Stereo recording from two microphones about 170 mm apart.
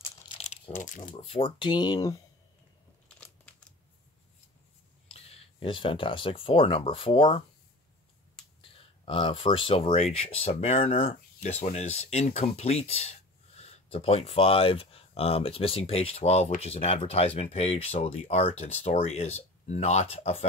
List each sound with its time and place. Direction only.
0.4 s crumpling: 45° left (ahead or behind)
1.2 s speech: 30° left (ahead or behind)
3.2 s a sound: 5° left (ahead or behind)
5.1 s speech: 35° left (ahead or behind)
8.7 s speech: 30° left (ahead or behind)